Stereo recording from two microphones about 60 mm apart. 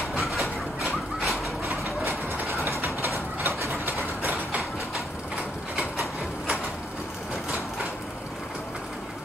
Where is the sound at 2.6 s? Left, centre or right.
Right.